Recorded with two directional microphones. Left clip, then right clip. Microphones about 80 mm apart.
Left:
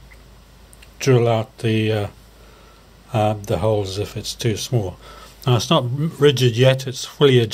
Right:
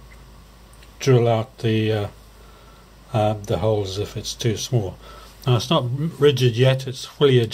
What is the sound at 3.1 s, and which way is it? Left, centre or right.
Speech, left.